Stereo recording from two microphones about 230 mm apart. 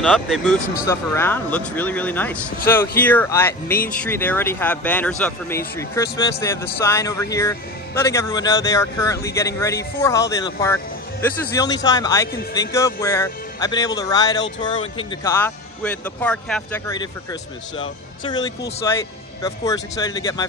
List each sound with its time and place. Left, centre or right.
0.0 s a man's voice: centre